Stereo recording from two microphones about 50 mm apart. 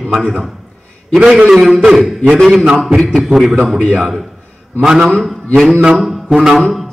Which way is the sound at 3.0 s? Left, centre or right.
Centre.